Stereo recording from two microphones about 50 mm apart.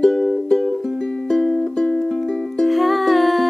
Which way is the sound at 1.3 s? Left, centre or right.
Centre.